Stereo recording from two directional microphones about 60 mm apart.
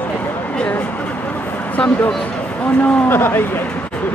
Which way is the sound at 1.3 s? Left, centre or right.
Left.